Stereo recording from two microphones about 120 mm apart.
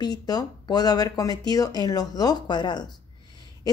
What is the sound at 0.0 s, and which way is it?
A woman's voice, 35° left (ahead or behind).